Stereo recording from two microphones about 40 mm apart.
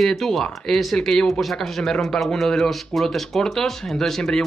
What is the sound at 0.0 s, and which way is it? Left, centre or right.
Speech, centre.